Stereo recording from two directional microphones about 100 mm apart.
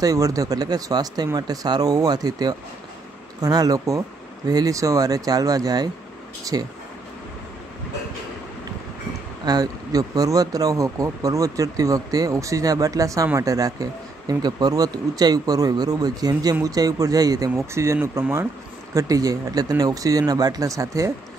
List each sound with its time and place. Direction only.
0.0 s speech: 35° right (ahead or behind)
9.4 s speech: 40° right (ahead or behind)